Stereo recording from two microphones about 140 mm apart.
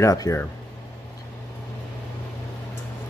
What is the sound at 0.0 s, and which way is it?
Speech, 25° left (ahead or behind).